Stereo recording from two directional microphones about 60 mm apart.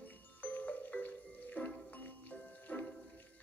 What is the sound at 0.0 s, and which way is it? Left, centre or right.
Music, left.